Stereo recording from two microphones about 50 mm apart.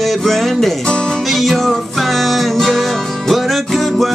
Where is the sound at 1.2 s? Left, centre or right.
Centre.